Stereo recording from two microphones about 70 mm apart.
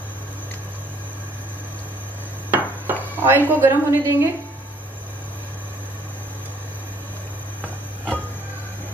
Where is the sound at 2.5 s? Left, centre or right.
Right.